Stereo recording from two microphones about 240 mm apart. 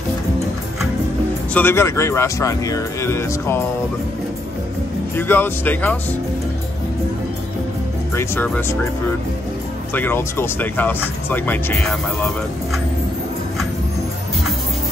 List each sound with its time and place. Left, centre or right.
1.5 s speech: centre
5.1 s speech: centre
8.1 s speech: centre
9.9 s speech: centre